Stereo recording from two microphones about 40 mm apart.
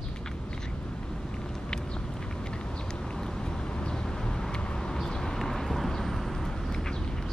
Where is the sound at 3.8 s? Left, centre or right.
Centre.